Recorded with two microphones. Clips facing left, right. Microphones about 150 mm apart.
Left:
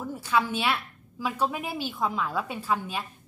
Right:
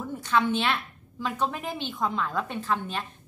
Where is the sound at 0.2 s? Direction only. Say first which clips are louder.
Right 1 dB; 5° left (ahead or behind).